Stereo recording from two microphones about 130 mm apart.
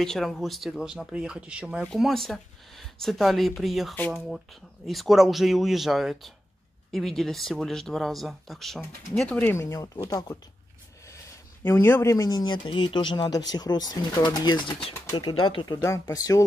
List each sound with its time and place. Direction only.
0.0 s speech: 5° left (ahead or behind)
9.4 s speech: 20° left (ahead or behind)
11.6 s speech: 15° left (ahead or behind)